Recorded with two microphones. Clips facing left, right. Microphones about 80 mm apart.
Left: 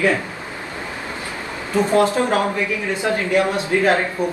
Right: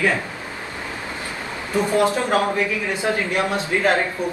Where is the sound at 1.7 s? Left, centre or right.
Left.